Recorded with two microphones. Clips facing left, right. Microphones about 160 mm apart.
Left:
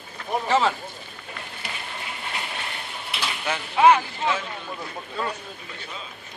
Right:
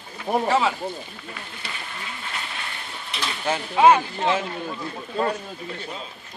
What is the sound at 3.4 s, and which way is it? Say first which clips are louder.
Speech: right 1 dB; 25° right (ahead or behind).